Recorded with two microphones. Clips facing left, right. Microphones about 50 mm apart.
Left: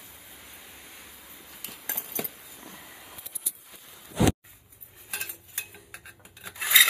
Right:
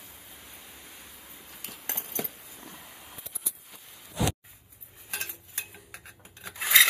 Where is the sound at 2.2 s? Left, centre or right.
Centre.